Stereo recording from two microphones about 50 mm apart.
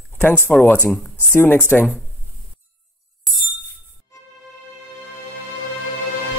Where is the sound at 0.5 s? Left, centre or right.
Centre.